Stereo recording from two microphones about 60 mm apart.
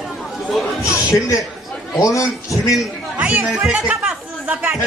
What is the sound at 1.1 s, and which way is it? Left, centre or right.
A man's voice, left.